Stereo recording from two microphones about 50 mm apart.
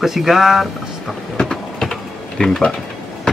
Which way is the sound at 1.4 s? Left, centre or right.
Centre.